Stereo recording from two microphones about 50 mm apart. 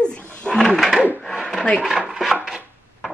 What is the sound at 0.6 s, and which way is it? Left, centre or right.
Speech, centre.